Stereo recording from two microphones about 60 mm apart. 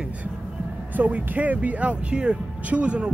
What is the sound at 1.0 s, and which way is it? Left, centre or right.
Speech, right.